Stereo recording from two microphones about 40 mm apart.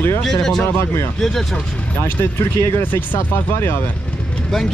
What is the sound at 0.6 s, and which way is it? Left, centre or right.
Speech, left.